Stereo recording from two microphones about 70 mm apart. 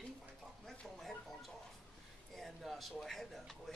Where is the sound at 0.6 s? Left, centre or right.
Centre.